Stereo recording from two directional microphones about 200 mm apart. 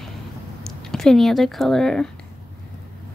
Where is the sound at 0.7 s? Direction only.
Centre (ahead or behind).